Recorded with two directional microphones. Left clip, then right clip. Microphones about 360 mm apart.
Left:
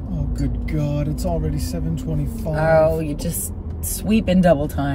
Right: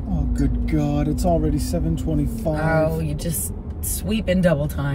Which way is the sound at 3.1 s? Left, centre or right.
Centre.